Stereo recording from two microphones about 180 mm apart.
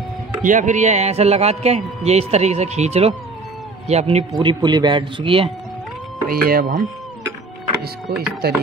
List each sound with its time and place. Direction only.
0.4 s a man's voice: 45° right (ahead or behind)
4.3 s speech: 25° right (ahead or behind)
6.2 s speech: 55° right (ahead or behind)
8.1 s speech: 60° right (ahead or behind)